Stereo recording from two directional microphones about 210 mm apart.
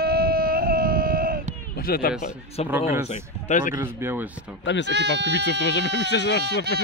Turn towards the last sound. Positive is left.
turn(degrees=55)  # may be behind; listen again after turning